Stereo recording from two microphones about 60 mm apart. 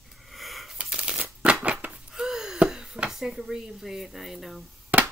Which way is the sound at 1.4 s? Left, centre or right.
Centre.